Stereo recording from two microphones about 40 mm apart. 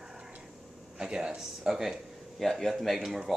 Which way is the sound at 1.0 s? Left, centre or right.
Right.